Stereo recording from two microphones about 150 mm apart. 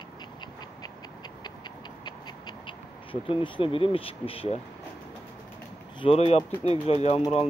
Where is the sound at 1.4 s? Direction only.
30° left (ahead or behind).